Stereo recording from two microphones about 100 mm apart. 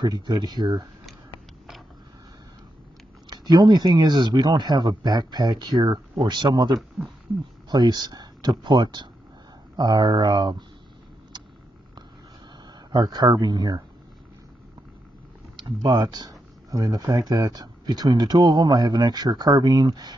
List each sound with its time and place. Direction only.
0.0 s speech: 50° right (ahead or behind)
3.3 s speech: 45° right (ahead or behind)
11.3 s vehicle: 45° right (ahead or behind)
12.9 s speech: 45° right (ahead or behind)
15.8 s speech: 45° right (ahead or behind)